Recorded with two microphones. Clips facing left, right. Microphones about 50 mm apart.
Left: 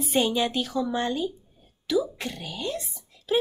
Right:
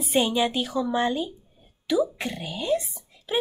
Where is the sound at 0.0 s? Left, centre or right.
Centre.